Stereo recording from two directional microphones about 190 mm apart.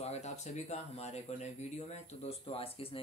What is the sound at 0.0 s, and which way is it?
Speech, 35° left (ahead or behind).